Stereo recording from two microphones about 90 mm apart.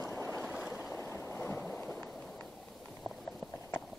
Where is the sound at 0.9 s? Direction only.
25° left (ahead or behind).